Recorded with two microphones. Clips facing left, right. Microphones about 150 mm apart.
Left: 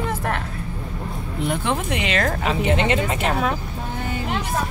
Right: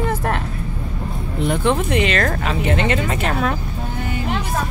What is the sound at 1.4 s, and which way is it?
Speech, 5° left (ahead or behind).